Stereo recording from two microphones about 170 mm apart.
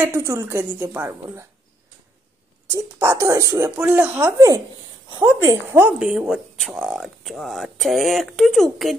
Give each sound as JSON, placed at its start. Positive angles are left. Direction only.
{"t": 0.0, "sound": "speech", "side_deg": -15}
{"t": 2.7, "sound": "speech", "side_deg": -15}